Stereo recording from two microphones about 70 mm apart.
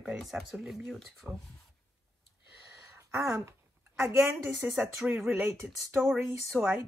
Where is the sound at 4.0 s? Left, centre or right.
Right.